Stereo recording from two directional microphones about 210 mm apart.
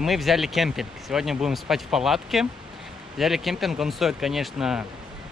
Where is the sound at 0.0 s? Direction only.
Centre (ahead or behind).